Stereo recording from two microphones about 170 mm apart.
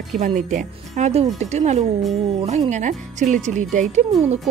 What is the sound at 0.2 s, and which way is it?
Speech, 50° right (ahead or behind).